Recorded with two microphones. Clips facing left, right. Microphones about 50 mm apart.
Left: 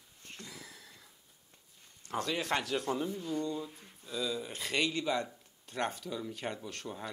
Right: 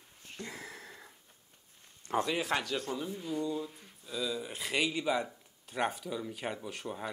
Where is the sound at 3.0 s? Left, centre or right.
Centre.